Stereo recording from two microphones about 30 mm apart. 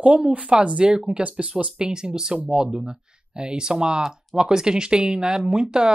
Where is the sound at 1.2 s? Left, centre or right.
Right.